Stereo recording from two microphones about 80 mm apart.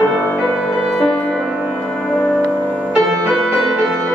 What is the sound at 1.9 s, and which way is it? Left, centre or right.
Music, centre.